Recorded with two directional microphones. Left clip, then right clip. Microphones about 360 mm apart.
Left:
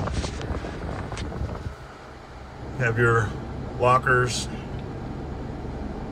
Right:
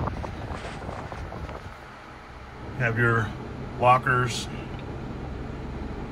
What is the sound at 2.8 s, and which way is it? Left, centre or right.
Speech, centre.